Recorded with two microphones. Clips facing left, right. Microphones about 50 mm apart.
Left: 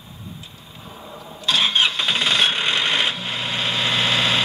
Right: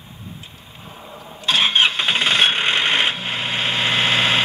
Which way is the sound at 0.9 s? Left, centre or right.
Centre.